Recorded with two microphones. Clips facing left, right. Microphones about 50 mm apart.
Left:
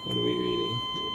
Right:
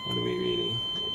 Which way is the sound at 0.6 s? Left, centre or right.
Left.